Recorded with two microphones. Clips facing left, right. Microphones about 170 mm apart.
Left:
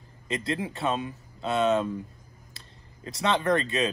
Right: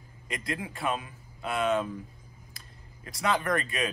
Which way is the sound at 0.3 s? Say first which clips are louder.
Left 5 dB; 25° left (ahead or behind).